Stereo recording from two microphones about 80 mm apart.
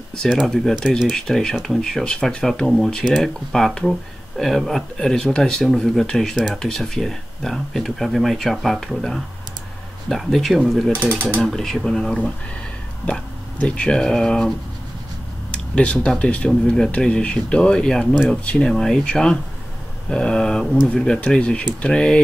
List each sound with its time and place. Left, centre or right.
0.3 s speech: centre
6.3 s speech: centre
6.6 s speech: centre
11.0 s speech: centre
11.4 s speech: centre
15.5 s a sound: centre
16.2 s speech: centre